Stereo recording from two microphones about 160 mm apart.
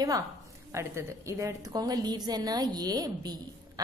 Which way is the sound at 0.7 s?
20° right (ahead or behind).